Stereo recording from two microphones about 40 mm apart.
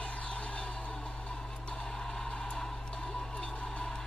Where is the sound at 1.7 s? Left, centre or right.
Centre.